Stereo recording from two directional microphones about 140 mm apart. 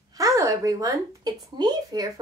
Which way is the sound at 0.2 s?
25° right (ahead or behind).